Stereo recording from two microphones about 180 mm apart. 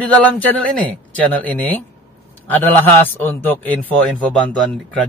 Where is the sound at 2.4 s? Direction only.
10° left (ahead or behind).